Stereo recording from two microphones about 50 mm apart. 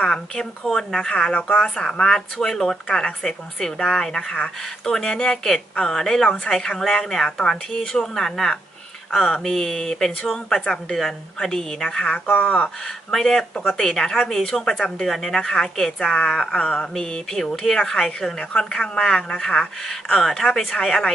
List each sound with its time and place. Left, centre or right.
0.0 s speech: centre
12.4 s speech: left
12.8 s speech: centre